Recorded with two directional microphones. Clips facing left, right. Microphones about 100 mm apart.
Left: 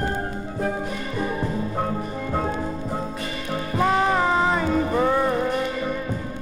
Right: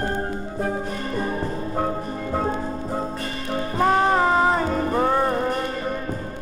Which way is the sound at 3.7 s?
35° right (ahead or behind).